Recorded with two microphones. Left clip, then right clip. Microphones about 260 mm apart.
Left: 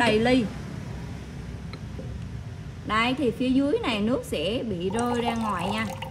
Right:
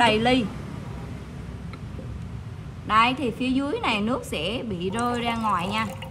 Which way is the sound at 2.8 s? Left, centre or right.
Right.